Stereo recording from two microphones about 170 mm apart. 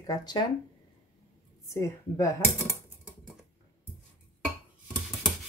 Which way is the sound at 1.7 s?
20° left (ahead or behind).